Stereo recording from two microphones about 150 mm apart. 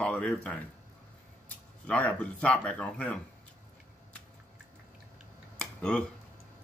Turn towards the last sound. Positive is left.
turn(degrees=5)  # may be behind; listen again after turning